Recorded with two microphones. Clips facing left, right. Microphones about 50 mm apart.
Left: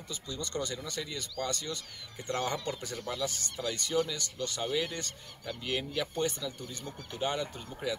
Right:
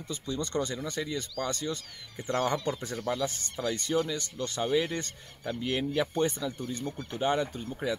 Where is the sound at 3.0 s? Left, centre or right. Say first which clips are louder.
Right 4 dB; right.